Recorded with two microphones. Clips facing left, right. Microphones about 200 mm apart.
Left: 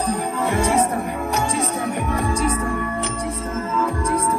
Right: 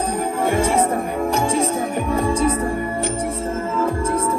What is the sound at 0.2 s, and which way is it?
Music, 55° right (ahead or behind).